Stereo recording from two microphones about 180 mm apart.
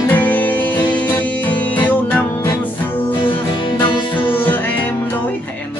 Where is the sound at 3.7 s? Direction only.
25° left (ahead or behind).